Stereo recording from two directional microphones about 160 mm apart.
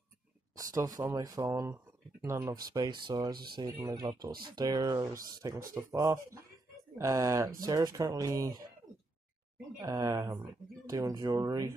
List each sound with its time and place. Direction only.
0.6 s speech: 20° right (ahead or behind)
2.7 s speech: 30° right (ahead or behind)
9.8 s speech: 20° right (ahead or behind)